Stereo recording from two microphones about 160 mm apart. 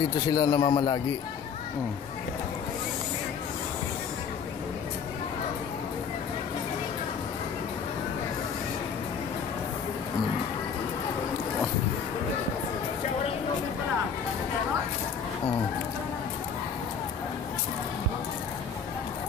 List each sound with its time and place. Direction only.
0.3 s speech: 25° left (ahead or behind)